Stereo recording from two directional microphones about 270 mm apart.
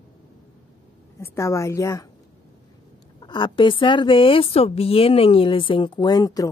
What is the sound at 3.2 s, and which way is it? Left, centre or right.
A woman's voice, centre.